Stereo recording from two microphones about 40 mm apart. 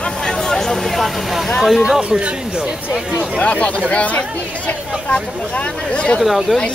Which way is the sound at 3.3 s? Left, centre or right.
Left.